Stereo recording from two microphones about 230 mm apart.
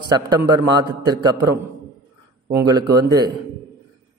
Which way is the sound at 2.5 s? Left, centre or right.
Centre.